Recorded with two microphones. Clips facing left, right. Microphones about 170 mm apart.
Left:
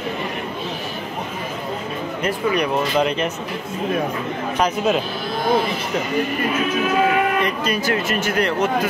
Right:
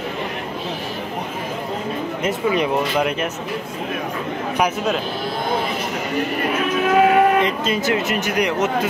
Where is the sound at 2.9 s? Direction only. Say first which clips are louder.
Left 1 dB; 5° right (ahead or behind).